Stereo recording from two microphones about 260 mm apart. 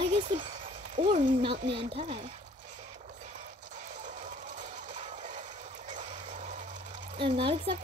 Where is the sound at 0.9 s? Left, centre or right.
Right.